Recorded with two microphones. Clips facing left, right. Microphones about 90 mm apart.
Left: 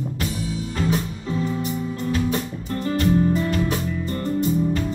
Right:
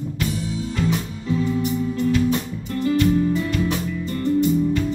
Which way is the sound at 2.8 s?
40° left (ahead or behind).